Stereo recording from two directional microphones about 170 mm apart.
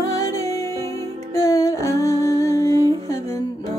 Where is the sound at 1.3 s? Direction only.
15° left (ahead or behind).